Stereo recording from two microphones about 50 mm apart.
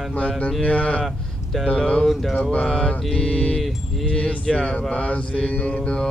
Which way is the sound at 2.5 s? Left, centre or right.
Centre.